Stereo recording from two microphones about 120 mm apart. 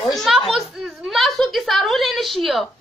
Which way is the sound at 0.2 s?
Centre (ahead or behind).